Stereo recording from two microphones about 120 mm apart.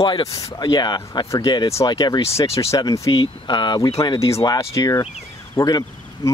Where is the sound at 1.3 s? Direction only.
25° left (ahead or behind).